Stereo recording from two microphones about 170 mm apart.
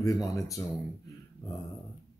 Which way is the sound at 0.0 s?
20° left (ahead or behind).